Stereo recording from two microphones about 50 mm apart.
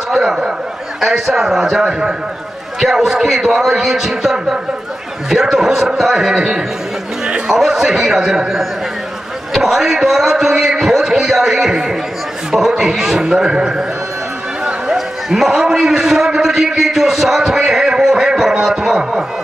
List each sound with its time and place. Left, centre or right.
0.1 s a man's voice: centre
7.2 s a sound: right
7.5 s a man's voice: centre